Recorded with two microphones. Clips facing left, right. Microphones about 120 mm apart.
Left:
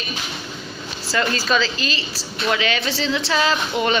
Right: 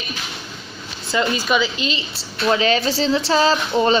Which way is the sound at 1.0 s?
20° right (ahead or behind).